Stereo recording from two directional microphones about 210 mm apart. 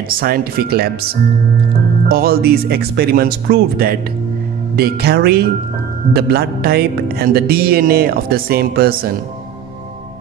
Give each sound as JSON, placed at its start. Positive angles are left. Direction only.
{"t": 0.2, "sound": "music", "side_deg": -45}